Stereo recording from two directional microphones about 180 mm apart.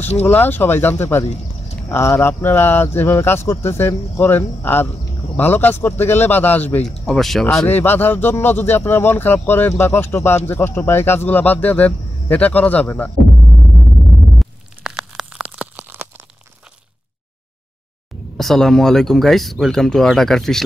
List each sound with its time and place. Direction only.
0.2 s speech: 10° left (ahead or behind)
14.4 s crunch: centre (ahead or behind)
18.4 s speech: centre (ahead or behind)